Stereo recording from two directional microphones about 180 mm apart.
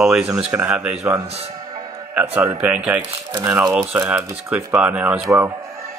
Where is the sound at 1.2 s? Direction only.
35° right (ahead or behind).